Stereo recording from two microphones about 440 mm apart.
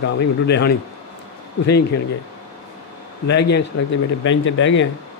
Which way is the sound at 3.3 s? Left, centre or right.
Left.